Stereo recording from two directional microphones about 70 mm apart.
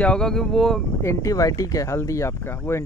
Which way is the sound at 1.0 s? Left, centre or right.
Left.